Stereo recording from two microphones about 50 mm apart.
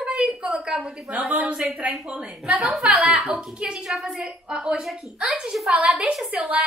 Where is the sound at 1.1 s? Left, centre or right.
Right.